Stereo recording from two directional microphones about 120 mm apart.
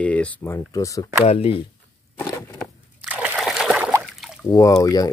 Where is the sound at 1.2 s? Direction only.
55° left (ahead or behind).